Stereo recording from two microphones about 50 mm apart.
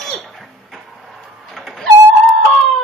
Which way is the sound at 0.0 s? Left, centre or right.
Centre.